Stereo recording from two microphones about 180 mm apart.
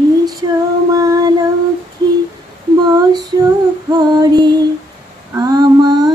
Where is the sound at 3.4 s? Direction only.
20° right (ahead or behind).